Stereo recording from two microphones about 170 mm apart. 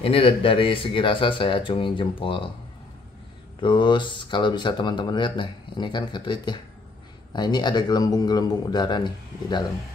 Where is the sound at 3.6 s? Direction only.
30° left (ahead or behind).